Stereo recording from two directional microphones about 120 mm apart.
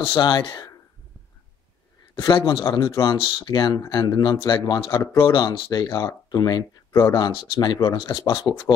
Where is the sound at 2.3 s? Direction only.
45° left (ahead or behind).